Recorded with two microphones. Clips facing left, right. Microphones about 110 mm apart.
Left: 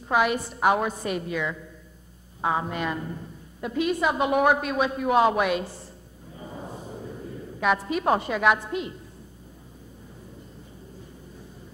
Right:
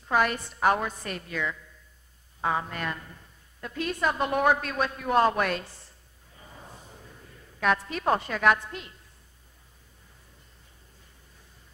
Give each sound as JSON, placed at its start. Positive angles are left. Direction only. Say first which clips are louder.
{"t": 0.1, "sound": "a woman's voice", "louder": "left 2 dB", "side_deg": 5}
{"t": 2.7, "sound": "a woman's voice", "louder": "left 5 dB", "side_deg": 10}
{"t": 6.3, "sound": "a sound", "louder": "left 10 dB", "side_deg": 15}
{"t": 7.6, "sound": "a woman's voice", "louder": "left 2 dB", "side_deg": 10}